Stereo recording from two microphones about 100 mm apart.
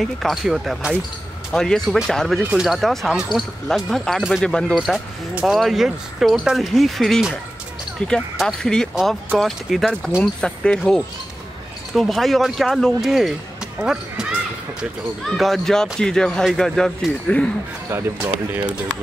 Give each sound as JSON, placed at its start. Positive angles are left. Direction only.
{"t": 0.0, "sound": "speech", "side_deg": 0}
{"t": 4.7, "sound": "speech", "side_deg": -5}
{"t": 15.2, "sound": "speech", "side_deg": 0}
{"t": 17.9, "sound": "speech", "side_deg": -25}